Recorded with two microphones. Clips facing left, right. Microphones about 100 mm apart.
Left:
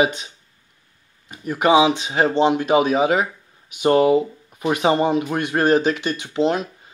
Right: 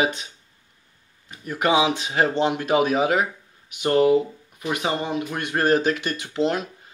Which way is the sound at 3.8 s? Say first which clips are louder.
Left 3 dB; 20° left (ahead or behind).